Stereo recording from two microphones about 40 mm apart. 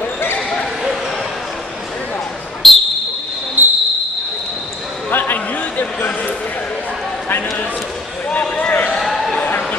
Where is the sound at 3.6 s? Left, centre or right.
Right.